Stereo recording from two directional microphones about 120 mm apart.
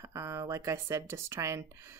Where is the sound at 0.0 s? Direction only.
25° right (ahead or behind).